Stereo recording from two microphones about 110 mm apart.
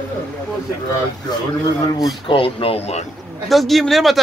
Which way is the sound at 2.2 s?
50° left (ahead or behind).